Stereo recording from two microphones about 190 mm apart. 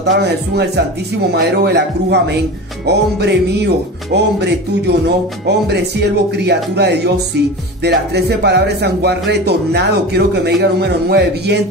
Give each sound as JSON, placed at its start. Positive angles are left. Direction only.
{"t": 0.0, "sound": "speech", "side_deg": -60}